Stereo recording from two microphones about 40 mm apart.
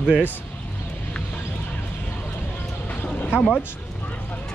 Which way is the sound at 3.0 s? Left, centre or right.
Left.